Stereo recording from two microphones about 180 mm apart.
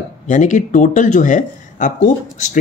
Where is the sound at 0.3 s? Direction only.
45° left (ahead or behind).